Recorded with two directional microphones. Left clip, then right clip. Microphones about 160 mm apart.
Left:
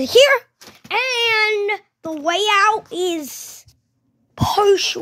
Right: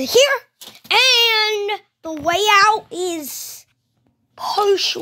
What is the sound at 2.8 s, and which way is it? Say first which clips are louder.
Speech: left 2 dB; 10° left (ahead or behind).